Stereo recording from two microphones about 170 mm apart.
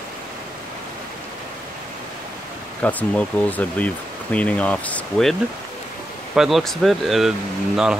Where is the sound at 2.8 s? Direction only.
10° left (ahead or behind).